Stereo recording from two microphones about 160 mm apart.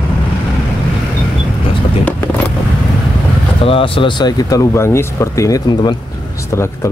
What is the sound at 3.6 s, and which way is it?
Speech, 35° left (ahead or behind).